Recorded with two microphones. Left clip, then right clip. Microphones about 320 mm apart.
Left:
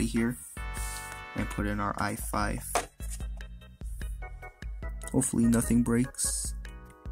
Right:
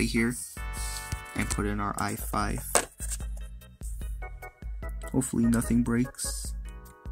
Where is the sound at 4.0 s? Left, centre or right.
Centre.